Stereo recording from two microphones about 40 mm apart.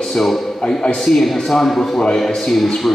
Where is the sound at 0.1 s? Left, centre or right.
Centre.